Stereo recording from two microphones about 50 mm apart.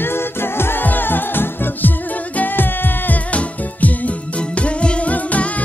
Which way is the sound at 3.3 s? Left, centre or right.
Left.